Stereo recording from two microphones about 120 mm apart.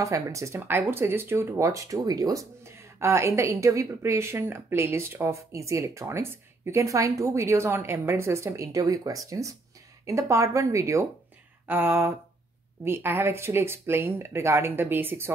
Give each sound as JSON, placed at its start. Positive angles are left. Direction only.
{"t": 0.0, "sound": "speech", "side_deg": -25}
{"t": 11.6, "sound": "a sound", "side_deg": -20}
{"t": 12.8, "sound": "speech", "side_deg": -20}